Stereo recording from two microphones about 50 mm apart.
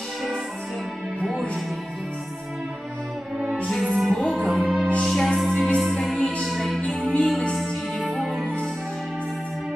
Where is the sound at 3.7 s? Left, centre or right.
Centre.